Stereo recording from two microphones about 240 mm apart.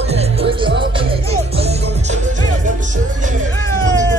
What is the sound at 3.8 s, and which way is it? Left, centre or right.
Music, right.